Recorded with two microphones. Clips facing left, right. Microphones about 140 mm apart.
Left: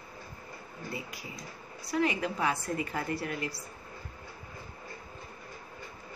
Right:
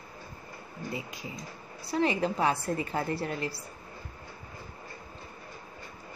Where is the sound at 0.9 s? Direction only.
20° right (ahead or behind).